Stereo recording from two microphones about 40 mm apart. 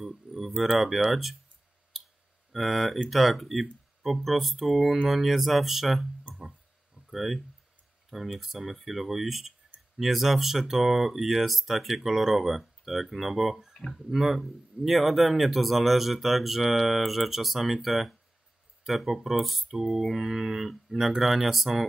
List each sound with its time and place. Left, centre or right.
0.0 s a sound: centre
0.6 s speech: centre
1.9 s clicking: centre
2.5 s speech: centre
6.3 s music: left
7.1 s speech: centre